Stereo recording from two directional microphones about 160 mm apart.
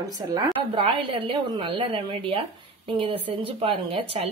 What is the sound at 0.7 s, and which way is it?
Speech, 30° right (ahead or behind).